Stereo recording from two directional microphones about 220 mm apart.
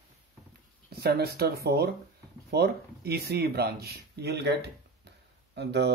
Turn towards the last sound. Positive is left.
turn(degrees=-50)  # may be behind; listen again after turning